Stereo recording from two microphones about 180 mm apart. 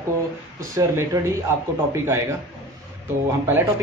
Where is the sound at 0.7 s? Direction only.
15° right (ahead or behind).